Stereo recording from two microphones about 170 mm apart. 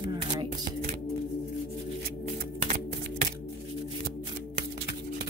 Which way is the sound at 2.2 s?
45° right (ahead or behind).